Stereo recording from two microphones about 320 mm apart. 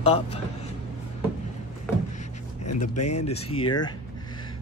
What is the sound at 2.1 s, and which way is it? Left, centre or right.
Speech, left.